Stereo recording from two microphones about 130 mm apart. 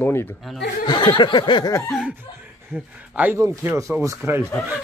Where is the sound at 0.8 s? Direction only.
40° left (ahead or behind).